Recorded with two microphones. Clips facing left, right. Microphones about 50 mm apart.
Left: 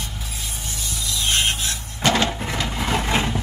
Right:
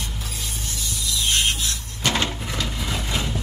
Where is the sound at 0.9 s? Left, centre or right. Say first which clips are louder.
Left 1 dB; left.